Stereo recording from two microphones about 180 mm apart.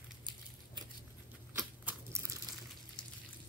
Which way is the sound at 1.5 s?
15° right (ahead or behind).